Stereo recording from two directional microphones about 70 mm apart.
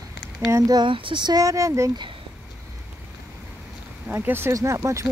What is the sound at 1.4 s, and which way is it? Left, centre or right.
Speech, right.